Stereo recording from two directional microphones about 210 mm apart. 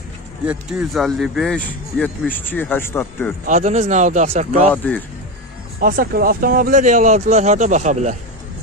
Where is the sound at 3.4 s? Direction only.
35° right (ahead or behind).